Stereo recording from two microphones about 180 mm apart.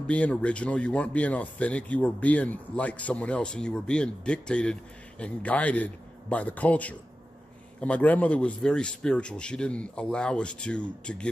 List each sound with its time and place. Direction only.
0.0 s speech: 5° left (ahead or behind)